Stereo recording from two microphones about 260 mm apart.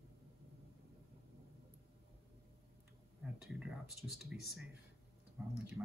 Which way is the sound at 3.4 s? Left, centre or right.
Centre.